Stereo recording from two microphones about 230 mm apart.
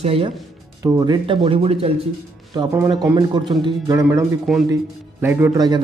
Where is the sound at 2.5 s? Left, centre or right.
Centre.